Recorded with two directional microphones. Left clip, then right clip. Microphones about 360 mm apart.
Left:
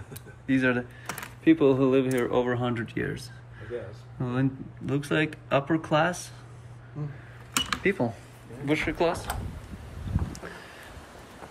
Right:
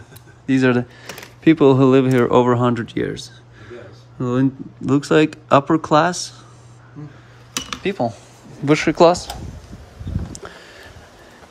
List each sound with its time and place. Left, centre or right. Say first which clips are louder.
0.5 s speech: right 8 dB; centre
7.8 s speech: right 8 dB; centre
8.6 s speech: right 13 dB; right